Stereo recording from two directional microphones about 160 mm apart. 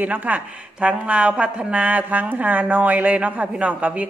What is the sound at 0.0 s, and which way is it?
A woman's voice, 10° right (ahead or behind).